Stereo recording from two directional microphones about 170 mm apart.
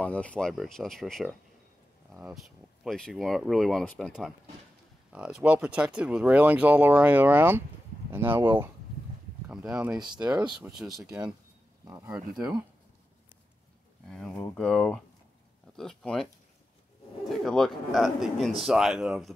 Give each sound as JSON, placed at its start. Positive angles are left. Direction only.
{"t": 0.0, "sound": "speech", "side_deg": 5}
{"t": 5.1, "sound": "speech", "side_deg": -5}
{"t": 9.9, "sound": "speech", "side_deg": -25}
{"t": 10.6, "sound": "speech", "side_deg": -5}
{"t": 11.8, "sound": "speech", "side_deg": -15}
{"t": 14.0, "sound": "speech", "side_deg": 5}
{"t": 17.3, "sound": "speech", "side_deg": 0}